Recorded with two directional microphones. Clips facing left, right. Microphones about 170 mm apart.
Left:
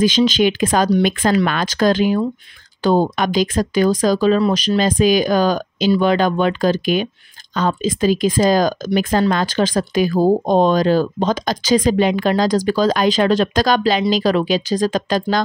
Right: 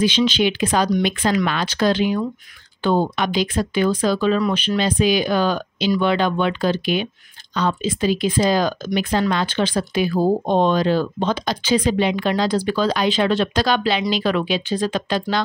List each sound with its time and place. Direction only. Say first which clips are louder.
0.0 s speech: left 3 dB; 45° left (ahead or behind)